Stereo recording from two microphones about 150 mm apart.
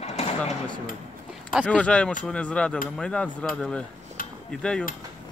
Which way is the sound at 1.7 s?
5° left (ahead or behind).